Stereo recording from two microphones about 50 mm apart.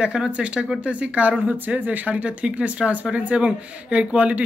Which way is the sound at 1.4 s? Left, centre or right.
Right.